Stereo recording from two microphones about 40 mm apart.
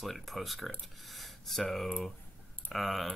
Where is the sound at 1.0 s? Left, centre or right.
Centre.